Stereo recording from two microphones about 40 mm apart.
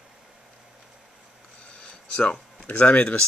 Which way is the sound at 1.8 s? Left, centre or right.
Left.